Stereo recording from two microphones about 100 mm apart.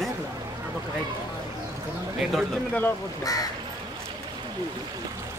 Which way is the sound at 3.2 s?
35° left (ahead or behind).